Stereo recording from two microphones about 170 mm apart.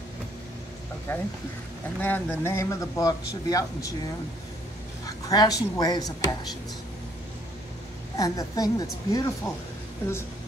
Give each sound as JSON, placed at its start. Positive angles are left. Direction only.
{"t": 1.1, "sound": "a woman's voice", "side_deg": 15}
{"t": 5.0, "sound": "speech", "side_deg": 20}
{"t": 8.2, "sound": "a woman's voice", "side_deg": 20}